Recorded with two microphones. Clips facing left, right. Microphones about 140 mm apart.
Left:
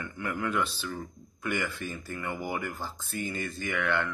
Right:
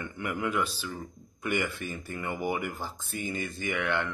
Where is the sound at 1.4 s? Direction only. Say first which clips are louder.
Right 2 dB; 20° right (ahead or behind).